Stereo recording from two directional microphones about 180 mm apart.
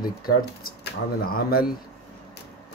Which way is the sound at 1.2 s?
55° left (ahead or behind).